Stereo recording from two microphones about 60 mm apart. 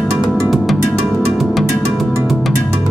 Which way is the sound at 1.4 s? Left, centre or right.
Centre.